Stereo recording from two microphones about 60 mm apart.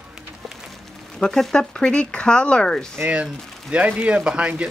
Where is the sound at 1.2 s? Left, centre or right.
Centre.